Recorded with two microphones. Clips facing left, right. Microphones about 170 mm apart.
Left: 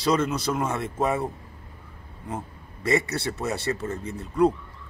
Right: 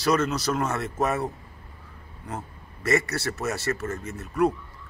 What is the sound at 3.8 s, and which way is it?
Speech, 15° left (ahead or behind).